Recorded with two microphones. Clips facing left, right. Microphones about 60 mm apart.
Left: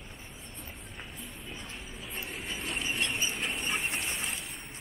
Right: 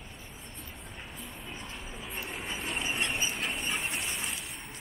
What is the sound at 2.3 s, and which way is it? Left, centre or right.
Train, centre.